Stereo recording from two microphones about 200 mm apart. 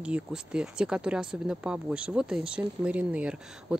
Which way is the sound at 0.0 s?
5° right (ahead or behind).